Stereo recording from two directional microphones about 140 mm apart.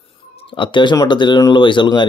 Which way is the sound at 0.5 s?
35° left (ahead or behind).